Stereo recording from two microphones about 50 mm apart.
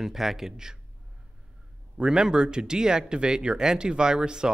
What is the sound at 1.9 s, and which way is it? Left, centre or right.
Speech, centre.